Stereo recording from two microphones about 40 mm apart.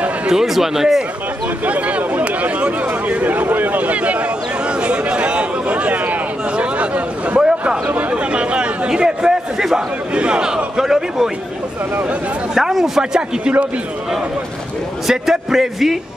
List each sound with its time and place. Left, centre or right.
0.3 s a man's voice: centre
1.7 s a sound: right
3.3 s a sound: right
7.8 s a man's voice: right; by 9.8 s centre
10.1 s a man's voice: right; by 11.2 s centre
12.5 s a man's voice: centre
15.0 s a man's voice: centre